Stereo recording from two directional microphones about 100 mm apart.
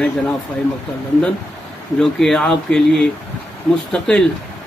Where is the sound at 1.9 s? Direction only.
5° left (ahead or behind).